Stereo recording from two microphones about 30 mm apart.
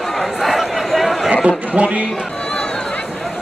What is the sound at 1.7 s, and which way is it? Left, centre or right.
Speech, right.